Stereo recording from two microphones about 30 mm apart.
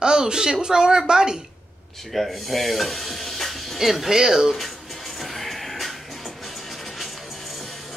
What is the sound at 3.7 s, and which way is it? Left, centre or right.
Speech, centre.